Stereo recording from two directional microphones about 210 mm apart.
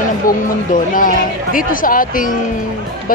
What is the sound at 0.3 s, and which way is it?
A woman's voice, 40° left (ahead or behind).